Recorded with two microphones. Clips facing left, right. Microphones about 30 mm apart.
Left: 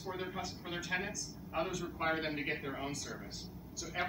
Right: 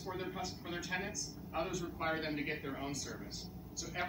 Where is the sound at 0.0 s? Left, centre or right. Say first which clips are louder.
Left 1 dB; centre.